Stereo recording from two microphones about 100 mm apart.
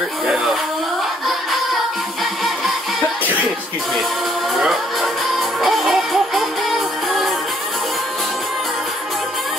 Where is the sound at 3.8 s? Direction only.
Centre (ahead or behind).